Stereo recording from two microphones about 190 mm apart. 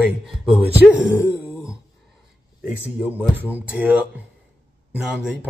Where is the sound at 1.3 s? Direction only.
15° left (ahead or behind).